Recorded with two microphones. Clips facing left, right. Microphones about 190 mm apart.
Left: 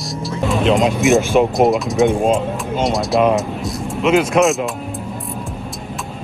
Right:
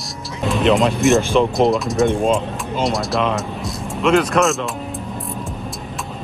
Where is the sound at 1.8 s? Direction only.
Centre (ahead or behind).